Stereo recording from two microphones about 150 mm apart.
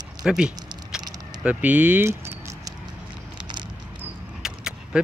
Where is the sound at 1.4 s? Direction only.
10° right (ahead or behind).